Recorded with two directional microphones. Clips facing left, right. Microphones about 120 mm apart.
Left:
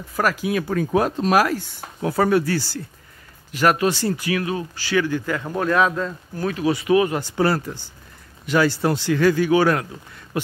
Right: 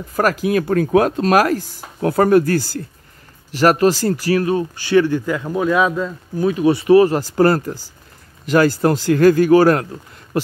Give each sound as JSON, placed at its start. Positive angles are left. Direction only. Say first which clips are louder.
{"t": 0.2, "sound": "speech", "louder": "right 5 dB", "side_deg": -50}
{"t": 1.3, "sound": "speech", "louder": "right 3 dB", "side_deg": -50}
{"t": 3.5, "sound": "speech", "louder": "right 5 dB", "side_deg": -35}
{"t": 5.4, "sound": "speech", "louder": "right 2 dB", "side_deg": -5}
{"t": 6.5, "sound": "speech", "louder": "right 6 dB", "side_deg": -30}